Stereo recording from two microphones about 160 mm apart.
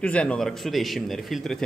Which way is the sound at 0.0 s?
5° left (ahead or behind).